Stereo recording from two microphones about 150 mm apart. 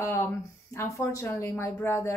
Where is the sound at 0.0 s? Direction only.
20° left (ahead or behind).